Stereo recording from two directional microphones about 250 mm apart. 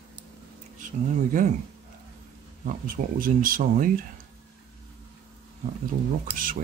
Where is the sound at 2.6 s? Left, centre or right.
Right.